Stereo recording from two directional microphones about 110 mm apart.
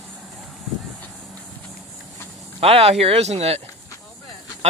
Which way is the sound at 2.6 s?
65° right (ahead or behind).